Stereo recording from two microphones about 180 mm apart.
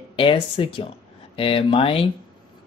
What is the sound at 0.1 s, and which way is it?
Speech, 30° left (ahead or behind).